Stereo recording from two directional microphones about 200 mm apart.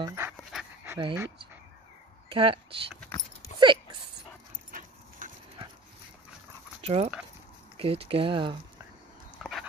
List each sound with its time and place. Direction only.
0.0 s dog: 15° right (ahead or behind)
0.5 s dog: centre (ahead or behind)
0.9 s speech: 20° right (ahead or behind)
3.5 s dog: 25° right (ahead or behind)
4.6 s dog: 40° right (ahead or behind)
6.8 s dog: 30° right (ahead or behind)
7.8 s speech: 30° right (ahead or behind)
9.4 s dog: centre (ahead or behind)